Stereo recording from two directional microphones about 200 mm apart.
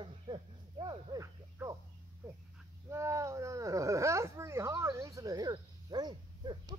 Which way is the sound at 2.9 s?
15° right (ahead or behind).